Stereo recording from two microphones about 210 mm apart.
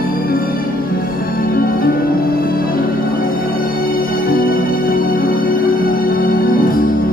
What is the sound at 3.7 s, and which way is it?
Music, 45° left (ahead or behind).